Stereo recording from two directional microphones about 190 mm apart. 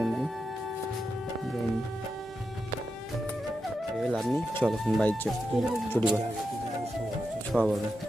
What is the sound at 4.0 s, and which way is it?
Speech, centre (ahead or behind).